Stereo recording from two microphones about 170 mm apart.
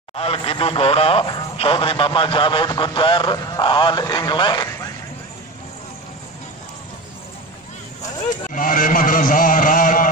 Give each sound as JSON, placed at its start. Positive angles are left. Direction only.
{"t": 0.1, "sound": "speech", "side_deg": 35}
{"t": 8.3, "sound": "a man's voice", "side_deg": 55}